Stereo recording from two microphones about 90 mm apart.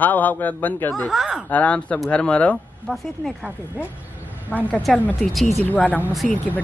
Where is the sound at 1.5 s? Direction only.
15° left (ahead or behind).